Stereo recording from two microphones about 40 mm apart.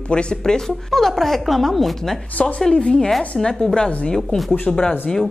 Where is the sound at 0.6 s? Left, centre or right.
Centre.